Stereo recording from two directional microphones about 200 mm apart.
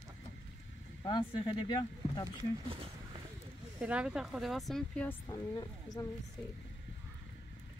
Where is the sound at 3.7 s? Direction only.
5° right (ahead or behind).